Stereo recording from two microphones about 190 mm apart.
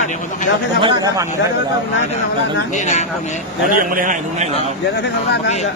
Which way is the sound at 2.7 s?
40° left (ahead or behind).